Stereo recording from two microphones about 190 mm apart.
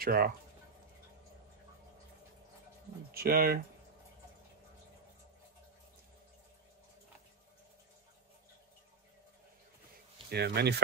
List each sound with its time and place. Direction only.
0.0 s speech: 55° right (ahead or behind)
3.1 s speech: 50° right (ahead or behind)
10.3 s speech: 60° right (ahead or behind)